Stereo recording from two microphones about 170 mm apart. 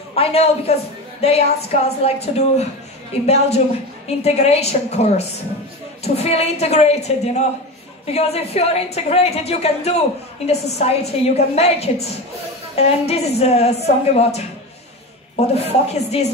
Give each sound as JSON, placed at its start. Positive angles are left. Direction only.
{"t": 0.1, "sound": "a woman's voice", "side_deg": 35}